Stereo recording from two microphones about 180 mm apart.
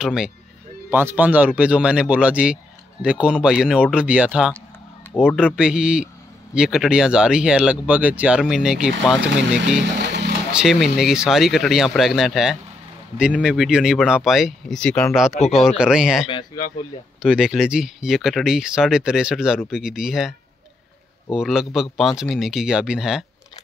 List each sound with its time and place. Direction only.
0.0 s speech: 5° right (ahead or behind)
9.9 s music: 70° right (ahead or behind)
10.5 s speech: 5° right (ahead or behind)
16.3 s speech: 25° left (ahead or behind)
17.2 s speech: 5° right (ahead or behind)